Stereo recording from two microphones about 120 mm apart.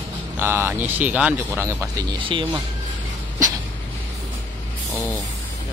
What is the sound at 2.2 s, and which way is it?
Speech, 45° right (ahead or behind).